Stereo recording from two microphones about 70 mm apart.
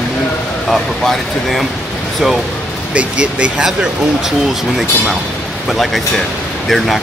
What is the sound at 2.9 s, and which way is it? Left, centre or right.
Speech, centre.